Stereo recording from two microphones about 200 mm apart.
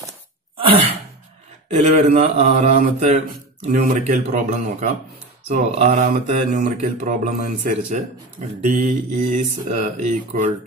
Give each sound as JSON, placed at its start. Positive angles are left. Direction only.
{"t": 1.7, "sound": "speech", "side_deg": -30}